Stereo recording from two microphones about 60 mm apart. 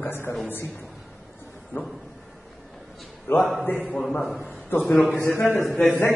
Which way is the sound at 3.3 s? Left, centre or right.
Left.